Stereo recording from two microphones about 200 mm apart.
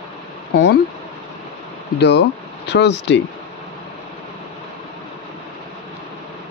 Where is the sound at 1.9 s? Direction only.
60° left (ahead or behind).